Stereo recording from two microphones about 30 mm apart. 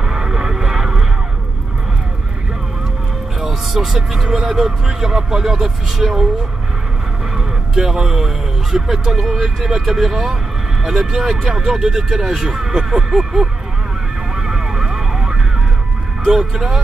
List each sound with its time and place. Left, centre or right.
0.0 s vehicle: centre
3.3 s vehicle: centre
4.5 s speech: centre
7.3 s music: centre
8.7 s speech: centre
14.3 s vehicle: centre
16.3 s speech: centre